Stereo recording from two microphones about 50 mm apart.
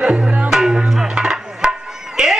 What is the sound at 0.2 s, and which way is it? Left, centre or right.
Music, right.